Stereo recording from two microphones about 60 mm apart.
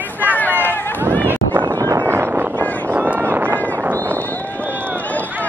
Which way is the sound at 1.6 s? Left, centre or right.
Right.